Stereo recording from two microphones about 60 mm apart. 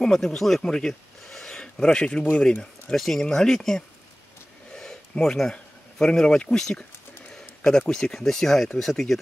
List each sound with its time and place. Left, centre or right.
0.0 s speech: centre
7.3 s a sound: centre
7.9 s speech: centre